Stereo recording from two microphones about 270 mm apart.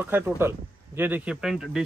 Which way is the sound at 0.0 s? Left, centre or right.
Centre.